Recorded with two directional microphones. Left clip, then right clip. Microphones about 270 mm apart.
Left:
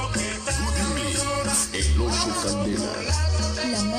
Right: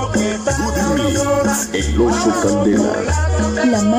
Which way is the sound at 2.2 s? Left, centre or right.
Right.